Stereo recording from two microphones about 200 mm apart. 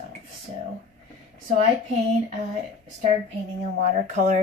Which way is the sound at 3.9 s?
40° right (ahead or behind).